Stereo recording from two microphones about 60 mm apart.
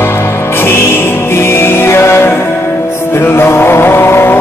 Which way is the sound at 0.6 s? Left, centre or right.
Left.